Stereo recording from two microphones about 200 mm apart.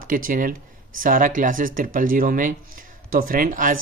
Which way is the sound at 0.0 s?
45° right (ahead or behind).